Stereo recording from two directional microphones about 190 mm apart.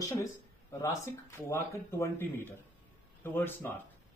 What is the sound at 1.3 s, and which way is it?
Speech, 15° left (ahead or behind).